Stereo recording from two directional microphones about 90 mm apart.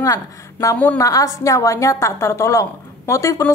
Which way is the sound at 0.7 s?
20° left (ahead or behind).